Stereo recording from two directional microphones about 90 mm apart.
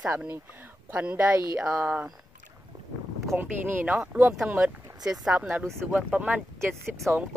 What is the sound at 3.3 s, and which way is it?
Speech, 20° right (ahead or behind).